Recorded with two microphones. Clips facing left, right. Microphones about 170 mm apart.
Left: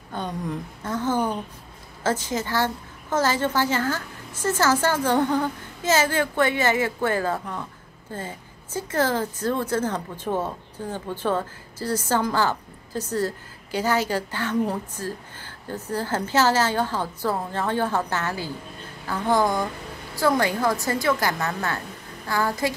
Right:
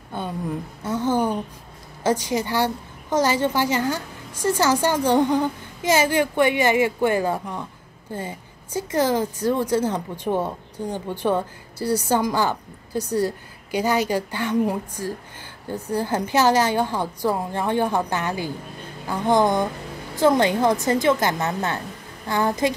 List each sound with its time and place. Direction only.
0.1 s a woman's voice: 10° right (ahead or behind)